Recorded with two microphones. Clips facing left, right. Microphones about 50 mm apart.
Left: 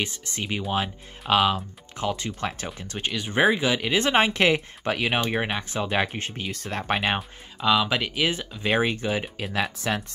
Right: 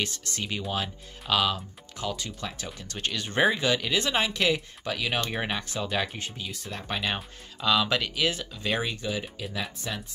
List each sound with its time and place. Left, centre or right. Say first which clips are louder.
0.0 s speech: left 2 dB; left
2.9 s speech: left 2 dB; centre; by 5.2 s left
5.2 s speech: left 4 dB; centre
5.7 s speech: left 4 dB; left
7.6 s speech: left 3 dB; centre; by 9.3 s left
9.4 s speech: left 7 dB; left